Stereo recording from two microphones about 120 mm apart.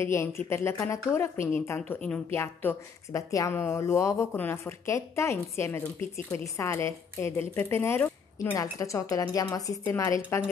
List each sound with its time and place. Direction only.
0.0 s speech: 20° left (ahead or behind)